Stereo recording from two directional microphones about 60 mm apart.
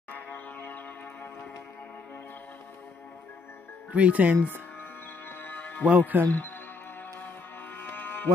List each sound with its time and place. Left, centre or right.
0.1 s music: left
3.9 s speech: right
5.4 s music: left
5.9 s speech: centre
6.2 s speech: left
7.7 s music: left